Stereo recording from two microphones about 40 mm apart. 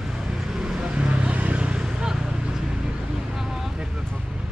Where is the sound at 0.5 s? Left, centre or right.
Centre.